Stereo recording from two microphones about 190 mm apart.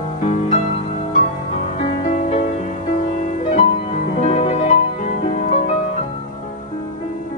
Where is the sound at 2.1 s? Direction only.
40° left (ahead or behind).